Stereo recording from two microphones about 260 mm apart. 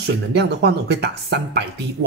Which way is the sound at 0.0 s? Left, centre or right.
Right.